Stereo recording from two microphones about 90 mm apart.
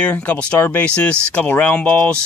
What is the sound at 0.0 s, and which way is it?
Speech, 15° left (ahead or behind).